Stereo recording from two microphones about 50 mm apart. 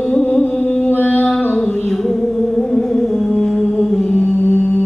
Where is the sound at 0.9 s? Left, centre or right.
Left.